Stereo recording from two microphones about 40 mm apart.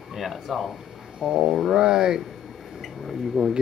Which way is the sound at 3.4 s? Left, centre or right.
Centre.